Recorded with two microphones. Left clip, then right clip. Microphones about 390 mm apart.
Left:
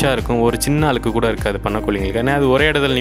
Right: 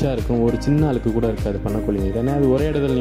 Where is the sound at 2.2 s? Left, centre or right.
Left.